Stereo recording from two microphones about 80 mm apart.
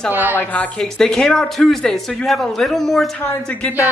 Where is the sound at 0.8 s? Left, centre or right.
Centre.